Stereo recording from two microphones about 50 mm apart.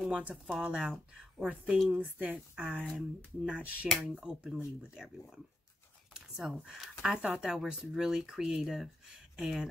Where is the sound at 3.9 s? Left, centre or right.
Centre.